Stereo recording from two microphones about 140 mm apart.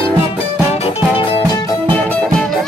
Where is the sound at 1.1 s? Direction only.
30° left (ahead or behind).